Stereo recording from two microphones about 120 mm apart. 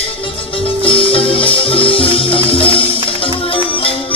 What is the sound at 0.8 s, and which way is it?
Music, 50° left (ahead or behind).